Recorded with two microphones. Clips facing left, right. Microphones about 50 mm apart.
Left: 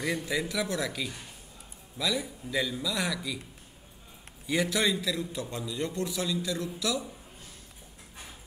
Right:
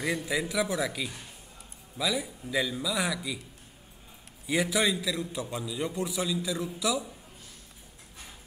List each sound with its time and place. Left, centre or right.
0.0 s a man's voice: centre
4.5 s a man's voice: centre